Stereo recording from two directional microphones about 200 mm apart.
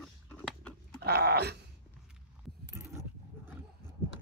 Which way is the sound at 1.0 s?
55° right (ahead or behind).